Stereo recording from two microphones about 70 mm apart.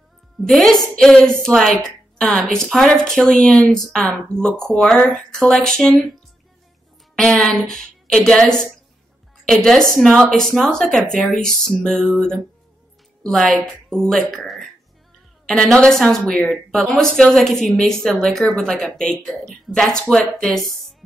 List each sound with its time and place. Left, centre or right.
0.4 s a woman's voice: centre
7.2 s speech: centre
9.5 s a woman's voice: centre